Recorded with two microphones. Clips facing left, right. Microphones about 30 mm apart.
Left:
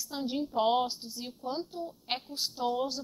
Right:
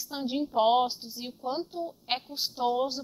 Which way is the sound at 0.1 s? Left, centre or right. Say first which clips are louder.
Right 3 dB; centre.